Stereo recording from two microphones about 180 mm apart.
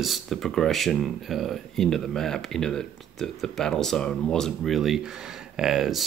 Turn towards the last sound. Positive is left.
turn(degrees=0)  # may be behind; listen again after turning